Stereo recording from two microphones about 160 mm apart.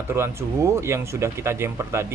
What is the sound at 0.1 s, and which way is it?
Speech, 15° right (ahead or behind).